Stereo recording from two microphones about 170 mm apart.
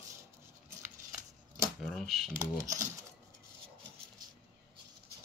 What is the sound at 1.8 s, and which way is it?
Speech, centre (ahead or behind).